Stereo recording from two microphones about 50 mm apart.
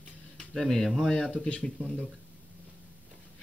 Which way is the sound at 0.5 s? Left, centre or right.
Centre.